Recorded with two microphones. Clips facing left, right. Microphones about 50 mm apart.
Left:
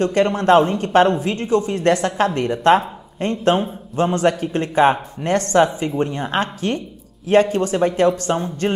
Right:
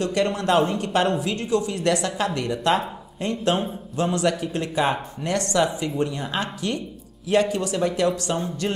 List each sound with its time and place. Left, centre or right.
0.0 s speech: left